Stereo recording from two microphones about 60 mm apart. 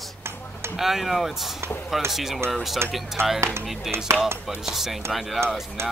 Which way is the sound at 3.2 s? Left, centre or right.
Right.